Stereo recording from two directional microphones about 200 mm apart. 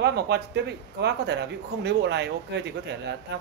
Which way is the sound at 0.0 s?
55° right (ahead or behind).